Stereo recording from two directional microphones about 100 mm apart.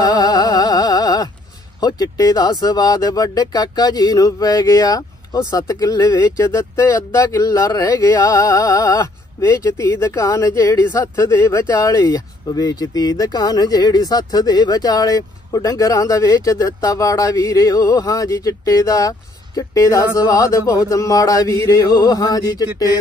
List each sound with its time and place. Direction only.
0.0 s music: 40° left (ahead or behind)
1.8 s speech: 40° left (ahead or behind)